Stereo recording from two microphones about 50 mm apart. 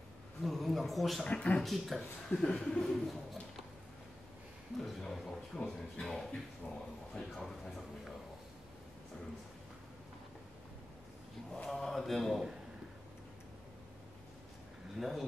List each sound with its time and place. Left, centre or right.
0.4 s speech: centre
1.2 s speech: left
1.6 s speech: centre
4.7 s speech: centre
5.5 s speech: centre
11.5 s speech: centre
15.0 s speech: centre